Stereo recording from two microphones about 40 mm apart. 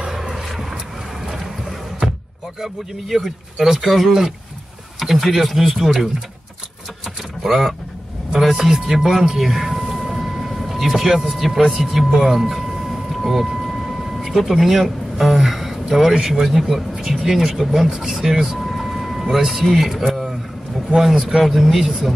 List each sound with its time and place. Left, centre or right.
0.0 s vehicle: centre
1.2 s boat: centre
2.6 s speech: centre
7.4 s speech: centre
13.1 s vehicle: centre
14.4 s speech: centre
18.6 s vehicle: centre
19.3 s speech: centre